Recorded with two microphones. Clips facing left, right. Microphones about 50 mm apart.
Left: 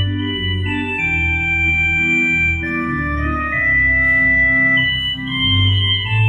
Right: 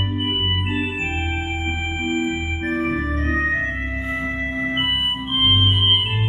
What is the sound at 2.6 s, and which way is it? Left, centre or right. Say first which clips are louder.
Organ: left 2 dB; left.